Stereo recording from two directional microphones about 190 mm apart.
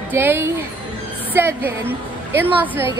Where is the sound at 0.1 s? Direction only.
10° right (ahead or behind).